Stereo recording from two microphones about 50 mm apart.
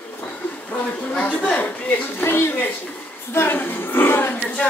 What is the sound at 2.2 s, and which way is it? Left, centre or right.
A woman's voice, left.